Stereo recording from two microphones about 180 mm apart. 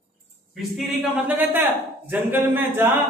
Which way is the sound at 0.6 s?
Centre (ahead or behind).